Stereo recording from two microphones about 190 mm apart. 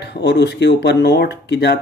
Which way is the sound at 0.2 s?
65° left (ahead or behind).